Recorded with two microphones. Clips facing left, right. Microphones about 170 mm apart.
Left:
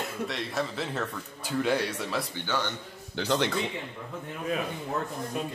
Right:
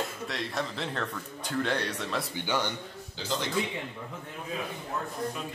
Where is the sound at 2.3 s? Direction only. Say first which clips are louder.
Right 1 dB; 15° right (ahead or behind).